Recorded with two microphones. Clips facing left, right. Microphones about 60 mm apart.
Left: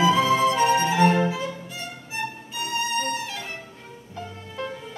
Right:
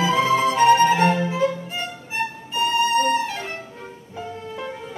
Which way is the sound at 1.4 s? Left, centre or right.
Right.